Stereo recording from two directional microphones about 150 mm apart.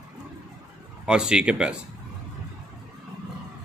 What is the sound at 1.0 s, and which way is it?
Speech, 5° right (ahead or behind).